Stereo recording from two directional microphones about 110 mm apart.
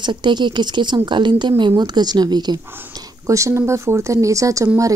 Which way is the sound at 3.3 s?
25° right (ahead or behind).